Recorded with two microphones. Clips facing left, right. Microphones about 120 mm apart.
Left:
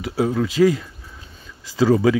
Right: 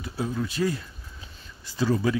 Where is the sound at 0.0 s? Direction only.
90° left.